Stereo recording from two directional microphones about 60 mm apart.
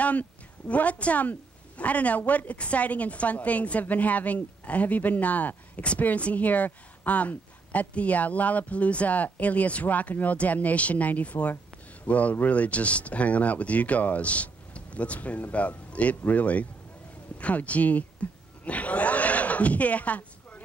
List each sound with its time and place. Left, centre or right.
0.0 s speech: left